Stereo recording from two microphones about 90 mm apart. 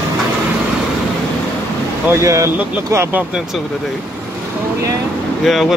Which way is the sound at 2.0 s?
30° right (ahead or behind).